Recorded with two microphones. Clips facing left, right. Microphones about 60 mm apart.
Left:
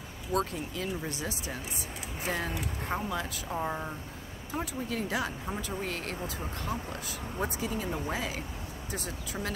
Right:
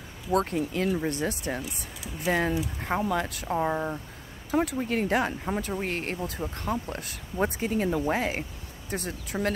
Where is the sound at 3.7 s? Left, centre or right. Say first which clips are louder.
Right 6 dB; right.